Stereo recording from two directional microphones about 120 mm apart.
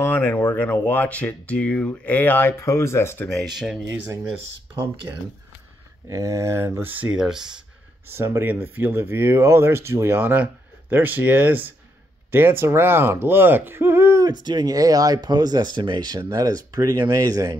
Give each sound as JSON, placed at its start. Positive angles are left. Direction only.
{"t": 0.0, "sound": "speech", "side_deg": 15}
{"t": 3.3, "sound": "speech", "side_deg": -5}
{"t": 3.9, "sound": "speech", "side_deg": -20}
{"t": 6.0, "sound": "speech", "side_deg": -30}
{"t": 7.2, "sound": "speech", "side_deg": -5}
{"t": 8.1, "sound": "speech", "side_deg": -20}